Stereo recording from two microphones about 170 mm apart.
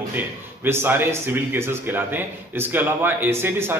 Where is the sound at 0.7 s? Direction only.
15° right (ahead or behind).